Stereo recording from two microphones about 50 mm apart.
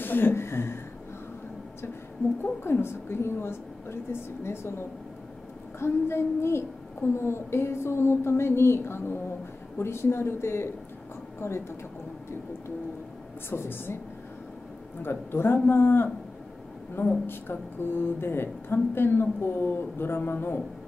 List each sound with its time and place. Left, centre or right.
0.0 s a woman's voice: left
2.6 s a woman's voice: left
13.5 s a woman's voice: left
15.0 s a woman's voice: left